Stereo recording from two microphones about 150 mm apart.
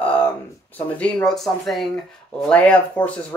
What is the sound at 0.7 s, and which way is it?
Speech, 10° left (ahead or behind).